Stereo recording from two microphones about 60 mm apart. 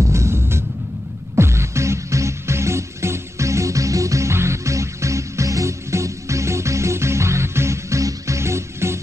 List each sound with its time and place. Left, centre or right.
0.1 s music: right